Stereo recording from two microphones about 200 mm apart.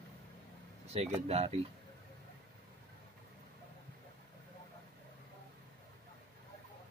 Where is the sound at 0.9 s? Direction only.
30° right (ahead or behind).